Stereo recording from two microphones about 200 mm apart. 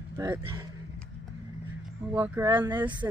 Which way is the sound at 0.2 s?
20° right (ahead or behind).